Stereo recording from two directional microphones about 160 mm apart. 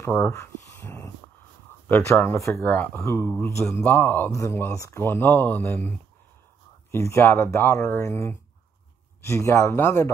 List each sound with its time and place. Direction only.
0.1 s speech: 15° left (ahead or behind)